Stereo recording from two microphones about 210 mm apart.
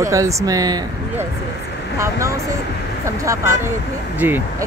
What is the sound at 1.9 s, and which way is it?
Speech, 15° right (ahead or behind).